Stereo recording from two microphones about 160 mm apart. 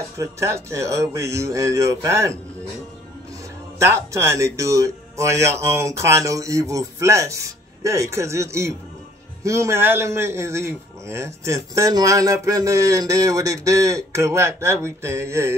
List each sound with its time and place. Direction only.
0.2 s a man's voice: 15° right (ahead or behind)
3.8 s a man's voice: 15° right (ahead or behind)